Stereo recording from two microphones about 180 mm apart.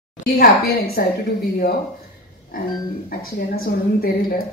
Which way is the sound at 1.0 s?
55° left (ahead or behind).